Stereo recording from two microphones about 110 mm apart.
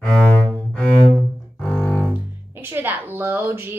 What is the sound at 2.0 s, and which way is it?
Speech, 20° right (ahead or behind).